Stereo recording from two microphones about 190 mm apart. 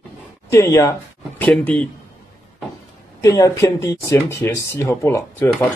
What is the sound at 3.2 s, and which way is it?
Speech, 20° left (ahead or behind).